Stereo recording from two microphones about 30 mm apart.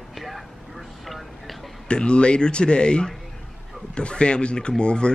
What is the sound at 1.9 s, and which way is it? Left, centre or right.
Speech, left.